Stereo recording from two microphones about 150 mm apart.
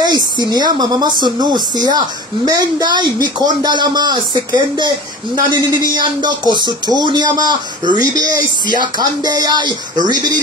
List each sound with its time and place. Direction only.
0.0 s speech: 30° right (ahead or behind)
6.5 s speech: 30° right (ahead or behind)